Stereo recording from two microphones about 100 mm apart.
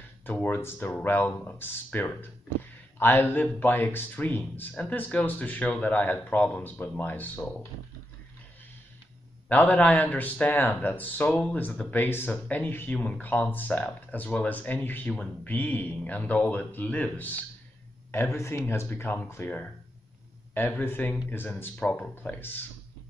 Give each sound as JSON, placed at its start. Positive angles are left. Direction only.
{"t": 0.2, "sound": "speech", "side_deg": 20}
{"t": 9.5, "sound": "speech", "side_deg": 15}
{"t": 18.1, "sound": "speech", "side_deg": 30}